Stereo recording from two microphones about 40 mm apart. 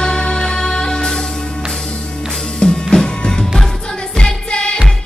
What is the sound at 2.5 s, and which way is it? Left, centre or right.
Music, centre.